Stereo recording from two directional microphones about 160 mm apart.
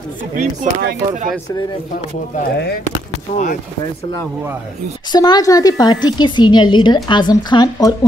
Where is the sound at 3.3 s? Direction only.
55° left (ahead or behind).